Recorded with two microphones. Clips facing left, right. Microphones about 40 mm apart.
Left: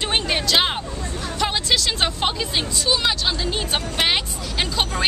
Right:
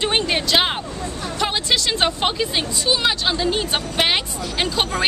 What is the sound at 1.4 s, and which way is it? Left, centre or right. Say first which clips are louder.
Speech: right 1 dB; centre.